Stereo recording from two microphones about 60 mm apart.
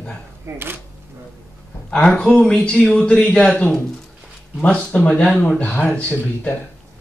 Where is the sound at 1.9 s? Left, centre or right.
Centre.